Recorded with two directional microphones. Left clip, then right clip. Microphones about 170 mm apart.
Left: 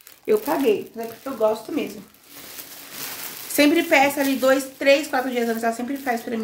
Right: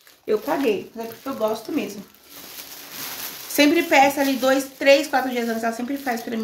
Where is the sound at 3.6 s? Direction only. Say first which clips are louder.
Right 1 dB; centre (ahead or behind).